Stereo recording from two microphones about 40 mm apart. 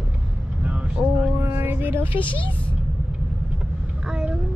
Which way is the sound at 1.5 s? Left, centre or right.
Right.